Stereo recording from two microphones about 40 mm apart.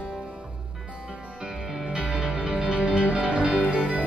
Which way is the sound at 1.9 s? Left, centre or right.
Right.